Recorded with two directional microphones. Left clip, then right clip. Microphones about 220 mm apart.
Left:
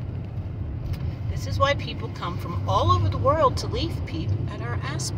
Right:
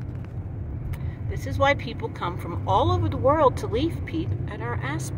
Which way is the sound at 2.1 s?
20° right (ahead or behind).